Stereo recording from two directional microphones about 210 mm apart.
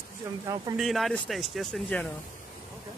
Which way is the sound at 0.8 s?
Centre (ahead or behind).